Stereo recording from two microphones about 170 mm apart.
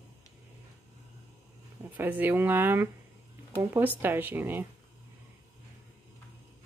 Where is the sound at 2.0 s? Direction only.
10° right (ahead or behind).